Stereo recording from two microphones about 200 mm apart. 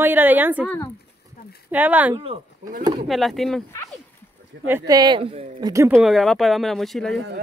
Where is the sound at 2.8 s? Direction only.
25° right (ahead or behind).